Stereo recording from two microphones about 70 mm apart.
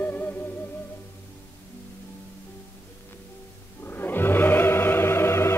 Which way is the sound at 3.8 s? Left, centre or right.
Left.